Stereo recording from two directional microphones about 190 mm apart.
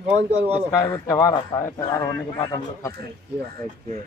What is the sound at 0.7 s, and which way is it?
A man's voice, 20° left (ahead or behind).